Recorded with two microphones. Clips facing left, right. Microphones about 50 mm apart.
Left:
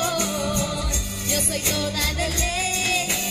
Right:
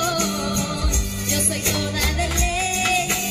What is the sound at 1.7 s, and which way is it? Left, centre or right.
Music, right.